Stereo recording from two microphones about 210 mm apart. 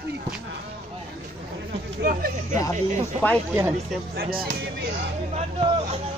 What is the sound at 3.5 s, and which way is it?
Speech, 10° right (ahead or behind).